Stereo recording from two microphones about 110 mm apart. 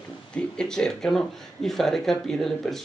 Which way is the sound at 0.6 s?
5° left (ahead or behind).